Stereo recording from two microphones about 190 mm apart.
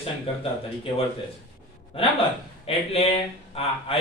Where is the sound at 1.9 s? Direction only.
30° left (ahead or behind).